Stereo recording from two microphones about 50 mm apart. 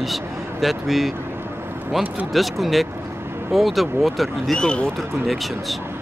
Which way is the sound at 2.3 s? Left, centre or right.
Centre.